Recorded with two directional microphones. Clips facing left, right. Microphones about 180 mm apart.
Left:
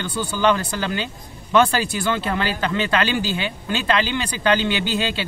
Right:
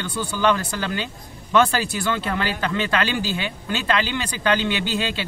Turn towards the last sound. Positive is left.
turn(degrees=30)  # may be behind; listen again after turning